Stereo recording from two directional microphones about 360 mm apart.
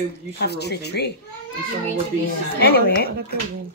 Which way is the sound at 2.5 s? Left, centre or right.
Left.